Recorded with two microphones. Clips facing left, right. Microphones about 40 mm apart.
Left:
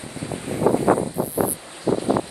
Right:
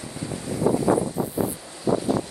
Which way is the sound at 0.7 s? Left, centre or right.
Left.